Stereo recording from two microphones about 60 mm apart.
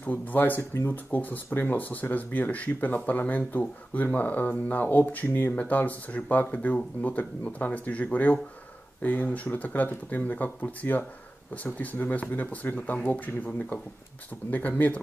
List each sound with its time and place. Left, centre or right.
0.0 s speech: left
0.6 s speech: left
0.9 s speech: left
14.5 s speech: left